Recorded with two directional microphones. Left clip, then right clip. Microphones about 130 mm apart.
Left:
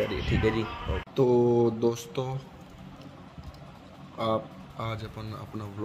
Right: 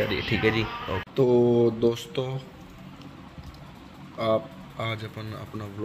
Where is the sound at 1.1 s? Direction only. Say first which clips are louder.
Right 2 dB; 15° left (ahead or behind).